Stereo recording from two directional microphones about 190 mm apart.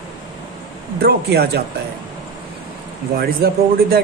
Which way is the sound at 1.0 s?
55° right (ahead or behind).